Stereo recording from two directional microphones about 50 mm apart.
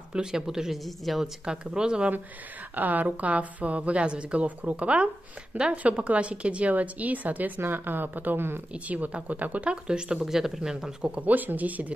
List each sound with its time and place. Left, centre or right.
0.1 s a woman's voice: centre
2.7 s a woman's voice: right
8.7 s speech: right
10.2 s a woman's voice: centre
11.1 s a woman's voice: right